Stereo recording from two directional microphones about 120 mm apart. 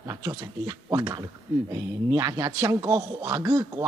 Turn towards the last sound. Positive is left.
turn(degrees=-30)  # may be behind; listen again after turning